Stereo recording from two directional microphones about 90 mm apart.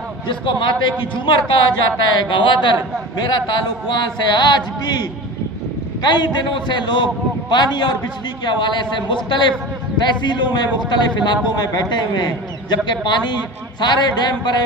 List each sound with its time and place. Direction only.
0.3 s a man's voice: 65° left (ahead or behind)
6.0 s a man's voice: 55° left (ahead or behind)